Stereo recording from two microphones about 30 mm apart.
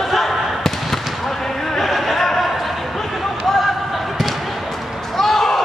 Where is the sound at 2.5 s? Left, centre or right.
Centre.